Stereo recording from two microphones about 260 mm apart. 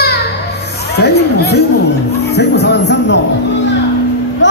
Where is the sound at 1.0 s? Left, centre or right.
Left.